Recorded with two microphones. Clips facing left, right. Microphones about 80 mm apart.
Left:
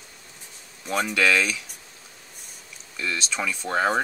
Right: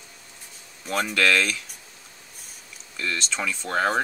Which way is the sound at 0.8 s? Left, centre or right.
Centre.